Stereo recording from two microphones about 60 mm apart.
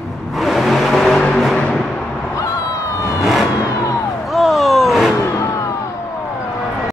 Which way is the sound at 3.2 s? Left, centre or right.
Centre.